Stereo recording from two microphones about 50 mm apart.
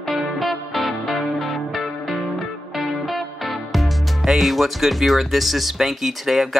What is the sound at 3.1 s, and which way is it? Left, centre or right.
Speech, centre.